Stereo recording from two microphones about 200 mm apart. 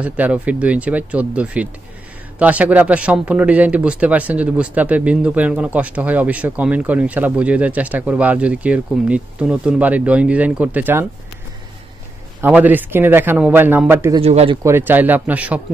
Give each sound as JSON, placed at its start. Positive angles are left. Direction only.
{"t": 0.0, "sound": "a man's voice", "side_deg": -5}
{"t": 12.4, "sound": "a man's voice", "side_deg": -10}
{"t": 14.2, "sound": "speech", "side_deg": -30}
{"t": 14.6, "sound": "a man's voice", "side_deg": -10}